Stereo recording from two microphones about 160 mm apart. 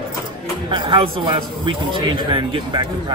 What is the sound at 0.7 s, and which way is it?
A man's voice, 30° right (ahead or behind).